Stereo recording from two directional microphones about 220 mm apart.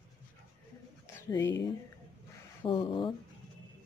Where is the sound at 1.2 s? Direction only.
15° left (ahead or behind).